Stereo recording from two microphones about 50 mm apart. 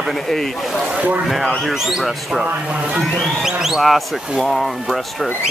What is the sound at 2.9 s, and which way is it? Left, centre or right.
Speech, centre.